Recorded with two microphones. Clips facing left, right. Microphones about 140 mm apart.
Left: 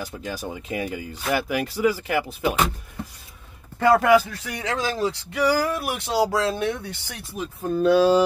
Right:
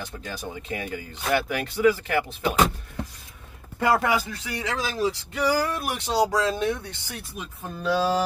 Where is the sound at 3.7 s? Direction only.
10° right (ahead or behind).